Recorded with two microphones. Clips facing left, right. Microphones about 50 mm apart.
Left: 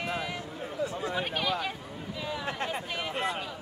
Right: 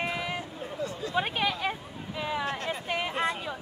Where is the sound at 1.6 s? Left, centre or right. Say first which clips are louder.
Right 3 dB; right.